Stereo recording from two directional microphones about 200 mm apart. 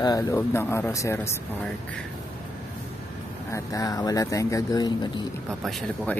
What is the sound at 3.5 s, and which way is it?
Speech, 15° left (ahead or behind).